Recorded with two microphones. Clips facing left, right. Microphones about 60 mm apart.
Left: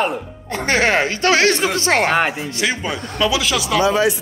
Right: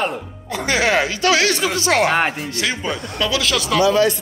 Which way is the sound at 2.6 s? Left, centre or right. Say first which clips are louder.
Left 1 dB; centre.